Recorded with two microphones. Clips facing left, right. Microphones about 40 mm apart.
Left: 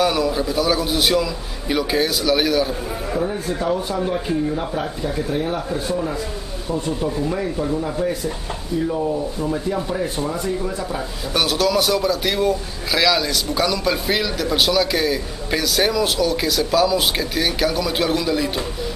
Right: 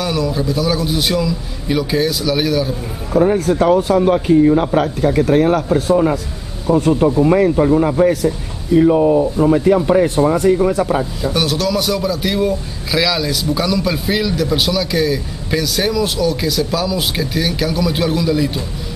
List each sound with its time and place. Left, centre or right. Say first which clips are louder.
0.0 s a man's voice: even; centre
3.3 s speech: right 9 dB; right
11.3 s a man's voice: even; centre